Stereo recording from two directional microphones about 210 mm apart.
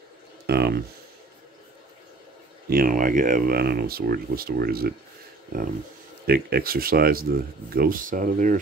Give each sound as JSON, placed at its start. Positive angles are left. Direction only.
{"t": 0.5, "sound": "a sound", "side_deg": -50}
{"t": 2.7, "sound": "speech", "side_deg": -40}
{"t": 6.2, "sound": "speech", "side_deg": -45}